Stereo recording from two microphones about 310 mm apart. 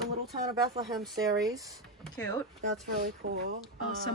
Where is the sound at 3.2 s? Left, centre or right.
Right.